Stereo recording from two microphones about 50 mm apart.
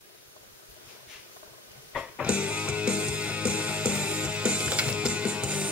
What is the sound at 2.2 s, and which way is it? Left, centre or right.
Music, right.